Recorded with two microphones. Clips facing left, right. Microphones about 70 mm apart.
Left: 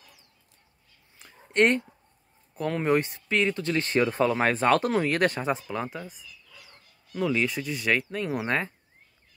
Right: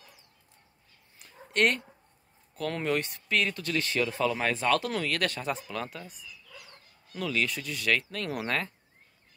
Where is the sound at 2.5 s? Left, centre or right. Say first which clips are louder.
Left 5 dB; centre; by 4.9 s left.